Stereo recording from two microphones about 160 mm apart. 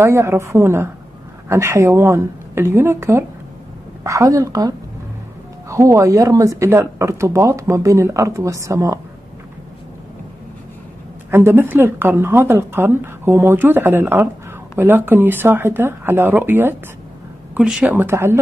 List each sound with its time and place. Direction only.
0.0 s a woman's voice: 15° right (ahead or behind)
11.2 s a woman's voice: 15° right (ahead or behind)